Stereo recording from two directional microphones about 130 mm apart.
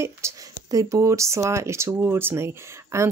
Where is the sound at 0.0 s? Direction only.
25° right (ahead or behind).